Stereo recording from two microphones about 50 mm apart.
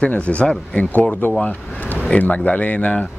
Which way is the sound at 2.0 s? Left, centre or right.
Left.